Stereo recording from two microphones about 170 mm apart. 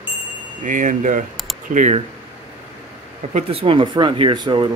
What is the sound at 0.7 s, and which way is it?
Speech, 50° right (ahead or behind).